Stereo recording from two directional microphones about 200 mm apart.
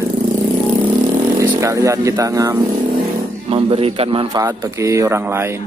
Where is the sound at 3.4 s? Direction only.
30° right (ahead or behind).